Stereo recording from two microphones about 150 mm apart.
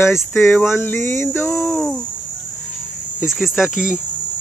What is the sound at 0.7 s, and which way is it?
Speech, 15° left (ahead or behind).